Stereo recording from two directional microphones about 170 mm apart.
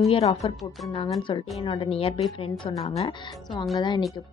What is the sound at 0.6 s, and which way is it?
Speech, centre (ahead or behind).